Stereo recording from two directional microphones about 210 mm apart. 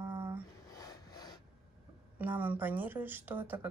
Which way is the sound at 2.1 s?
10° right (ahead or behind).